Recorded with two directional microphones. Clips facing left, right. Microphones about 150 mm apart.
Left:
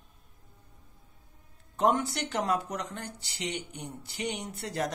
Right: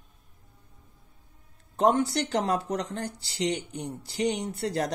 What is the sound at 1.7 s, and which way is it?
Speech, 35° right (ahead or behind).